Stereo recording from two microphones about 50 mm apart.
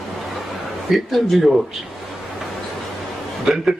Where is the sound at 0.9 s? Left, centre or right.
Centre.